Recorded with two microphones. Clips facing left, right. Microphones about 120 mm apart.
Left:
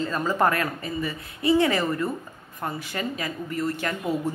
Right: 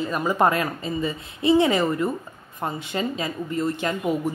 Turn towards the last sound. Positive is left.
turn(degrees=-15)  # may be behind; listen again after turning